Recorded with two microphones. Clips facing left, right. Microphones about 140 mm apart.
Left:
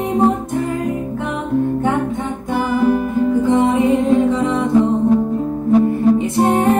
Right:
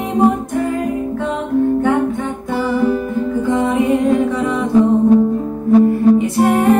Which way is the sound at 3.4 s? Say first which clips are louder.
Even; 20° left (ahead or behind).